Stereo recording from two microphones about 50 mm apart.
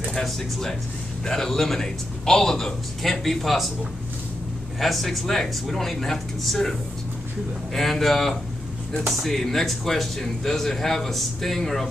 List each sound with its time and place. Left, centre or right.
0.1 s speech: centre
4.7 s speech: centre
7.7 s speech: centre